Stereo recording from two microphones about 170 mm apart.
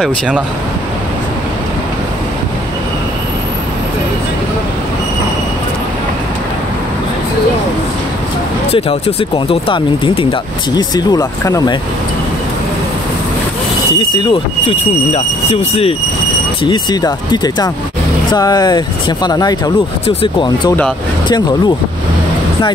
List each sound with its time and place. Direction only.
8.7 s speech: 30° left (ahead or behind)
13.9 s speech: 30° left (ahead or behind)
16.6 s speech: 25° left (ahead or behind)
20.1 s speech: 35° left (ahead or behind)